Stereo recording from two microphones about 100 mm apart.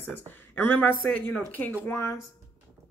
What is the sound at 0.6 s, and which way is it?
A woman's voice, 20° left (ahead or behind).